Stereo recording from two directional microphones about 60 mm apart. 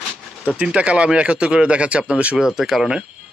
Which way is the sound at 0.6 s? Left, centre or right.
Centre.